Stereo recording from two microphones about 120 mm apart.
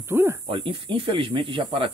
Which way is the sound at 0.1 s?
20° right (ahead or behind).